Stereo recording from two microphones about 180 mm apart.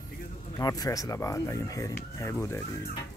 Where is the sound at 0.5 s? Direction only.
20° left (ahead or behind).